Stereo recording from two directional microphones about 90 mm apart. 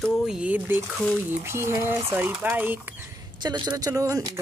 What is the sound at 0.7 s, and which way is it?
Speech, 25° right (ahead or behind).